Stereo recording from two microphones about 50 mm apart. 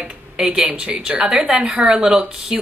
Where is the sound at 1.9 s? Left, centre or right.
Centre.